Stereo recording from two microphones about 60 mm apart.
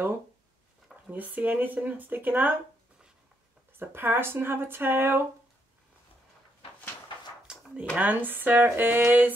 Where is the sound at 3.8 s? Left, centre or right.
Right.